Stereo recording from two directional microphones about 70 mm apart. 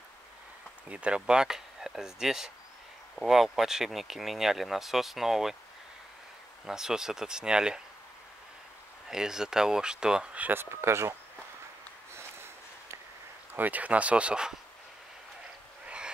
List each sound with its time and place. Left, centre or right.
0.8 s speech: centre
6.6 s speech: centre
9.1 s speech: centre
10.4 s speech: right
12.1 s a sound: right
13.5 s speech: right